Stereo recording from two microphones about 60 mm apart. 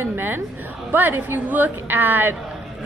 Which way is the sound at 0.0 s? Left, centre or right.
Right.